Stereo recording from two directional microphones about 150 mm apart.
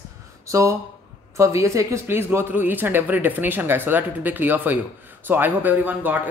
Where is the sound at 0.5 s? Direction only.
20° right (ahead or behind).